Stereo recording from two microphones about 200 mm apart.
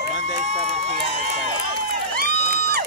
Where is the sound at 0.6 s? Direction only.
35° right (ahead or behind).